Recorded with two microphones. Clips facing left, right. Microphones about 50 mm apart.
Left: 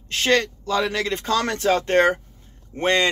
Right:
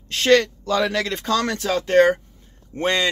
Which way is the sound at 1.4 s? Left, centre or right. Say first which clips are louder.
Left 2 dB; left.